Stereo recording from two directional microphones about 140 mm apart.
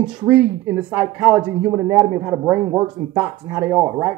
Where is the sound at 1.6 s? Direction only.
20° right (ahead or behind).